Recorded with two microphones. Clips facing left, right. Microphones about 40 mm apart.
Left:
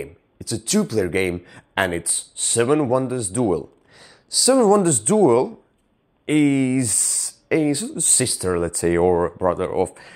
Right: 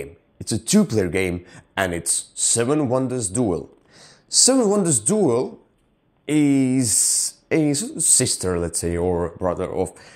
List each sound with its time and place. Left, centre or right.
0.0 s speech: centre
4.6 s speech: left
7.4 s speech: centre
7.9 s speech: left
8.2 s speech: centre